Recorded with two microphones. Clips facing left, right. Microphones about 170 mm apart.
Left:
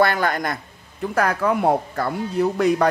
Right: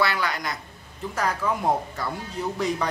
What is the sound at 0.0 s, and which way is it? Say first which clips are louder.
Speech: left 6 dB; 50° left (ahead or behind).